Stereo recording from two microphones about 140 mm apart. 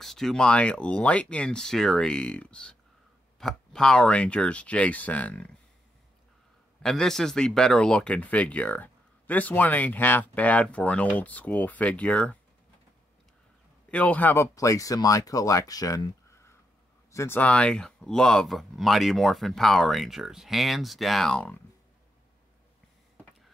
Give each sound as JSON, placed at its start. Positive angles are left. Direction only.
{"t": 0.0, "sound": "speech", "side_deg": 0}
{"t": 6.8, "sound": "speech", "side_deg": 5}
{"t": 13.8, "sound": "speech", "side_deg": 10}